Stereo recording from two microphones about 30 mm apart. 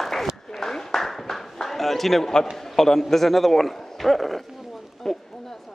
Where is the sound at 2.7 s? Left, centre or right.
Centre.